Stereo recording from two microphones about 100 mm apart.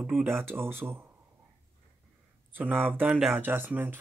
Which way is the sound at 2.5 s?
15° right (ahead or behind).